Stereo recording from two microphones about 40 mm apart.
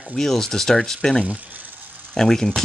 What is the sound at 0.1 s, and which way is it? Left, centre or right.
Speech, centre.